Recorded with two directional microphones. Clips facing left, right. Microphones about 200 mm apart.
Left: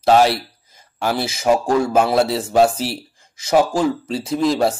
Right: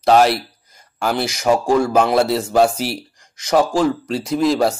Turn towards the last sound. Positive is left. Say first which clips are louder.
# right 1 dB
turn(degrees=0)  # may be behind; listen again after turning